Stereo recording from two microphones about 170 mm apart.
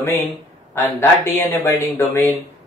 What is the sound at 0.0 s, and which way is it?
Speech, 15° left (ahead or behind).